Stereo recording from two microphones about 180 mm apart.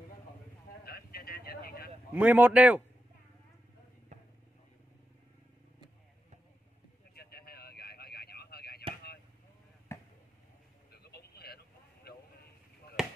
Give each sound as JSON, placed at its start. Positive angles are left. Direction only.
{"t": 0.8, "sound": "vehicle", "side_deg": 60}
{"t": 2.1, "sound": "speech", "side_deg": -10}
{"t": 7.2, "sound": "a sound", "side_deg": 60}
{"t": 9.9, "sound": "chop", "side_deg": 15}
{"t": 10.9, "sound": "vehicle", "side_deg": 60}
{"t": 13.0, "sound": "basketball bounce", "side_deg": 0}